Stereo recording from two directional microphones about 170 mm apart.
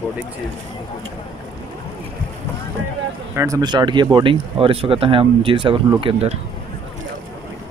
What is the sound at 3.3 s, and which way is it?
Speech, 20° right (ahead or behind).